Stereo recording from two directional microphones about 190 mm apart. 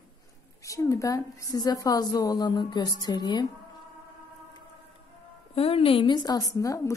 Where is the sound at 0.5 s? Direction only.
15° left (ahead or behind).